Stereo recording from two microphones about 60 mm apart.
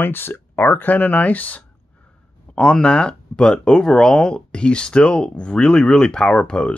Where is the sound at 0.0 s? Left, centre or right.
Left.